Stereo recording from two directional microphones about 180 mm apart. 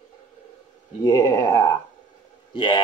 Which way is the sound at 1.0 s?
20° left (ahead or behind).